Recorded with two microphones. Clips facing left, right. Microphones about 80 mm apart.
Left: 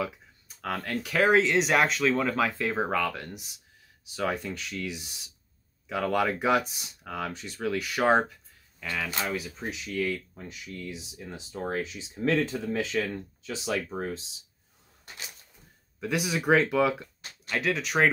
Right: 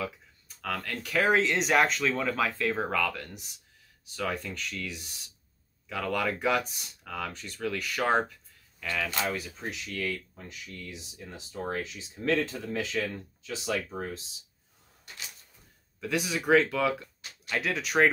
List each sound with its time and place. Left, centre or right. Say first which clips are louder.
0.6 s speech: left 2 dB; left
1.0 s speech: left 2 dB; centre
16.0 s speech: left 2 dB; centre
17.5 s speech: left 2 dB; centre